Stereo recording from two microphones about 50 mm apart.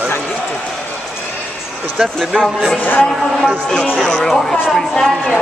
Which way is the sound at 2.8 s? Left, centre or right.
Left.